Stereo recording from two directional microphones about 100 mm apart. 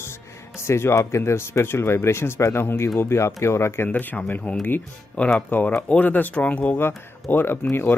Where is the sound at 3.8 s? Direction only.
10° left (ahead or behind).